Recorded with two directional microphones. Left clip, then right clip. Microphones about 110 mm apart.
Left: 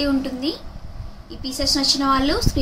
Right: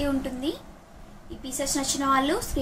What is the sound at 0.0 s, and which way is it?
A woman's voice, 35° left (ahead or behind).